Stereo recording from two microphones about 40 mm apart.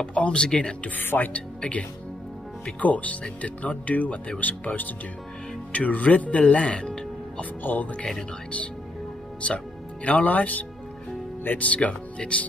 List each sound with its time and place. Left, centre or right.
0.0 s speech: left
1.1 s speech: left
1.6 s speech: left
7.6 s speech: left
10.0 s speech: left